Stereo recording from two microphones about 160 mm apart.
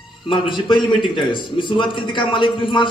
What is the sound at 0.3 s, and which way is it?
A man's voice, 30° left (ahead or behind).